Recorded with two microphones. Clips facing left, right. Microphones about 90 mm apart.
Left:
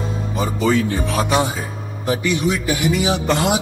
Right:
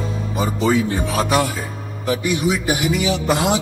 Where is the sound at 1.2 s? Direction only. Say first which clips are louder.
Even; 20° left (ahead or behind).